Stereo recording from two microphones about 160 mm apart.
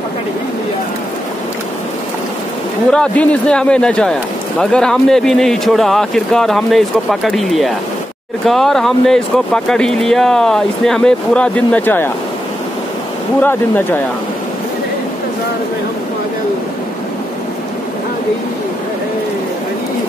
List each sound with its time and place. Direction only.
2.9 s speech: 5° left (ahead or behind)
13.4 s speech: 10° left (ahead or behind)